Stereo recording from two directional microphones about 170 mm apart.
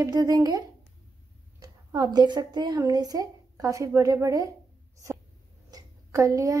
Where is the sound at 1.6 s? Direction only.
25° right (ahead or behind).